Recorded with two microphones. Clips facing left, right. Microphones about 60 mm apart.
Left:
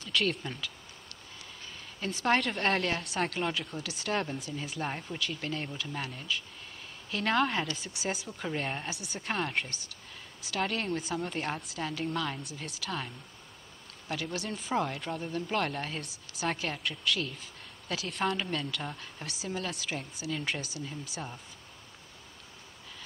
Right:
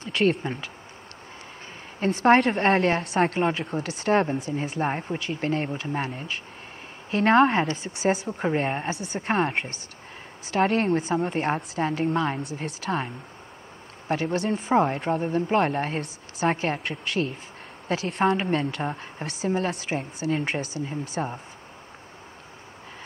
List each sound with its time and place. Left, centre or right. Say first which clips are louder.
0.0 s speech: right 8 dB; right
2.0 s a woman's voice: right 10 dB; right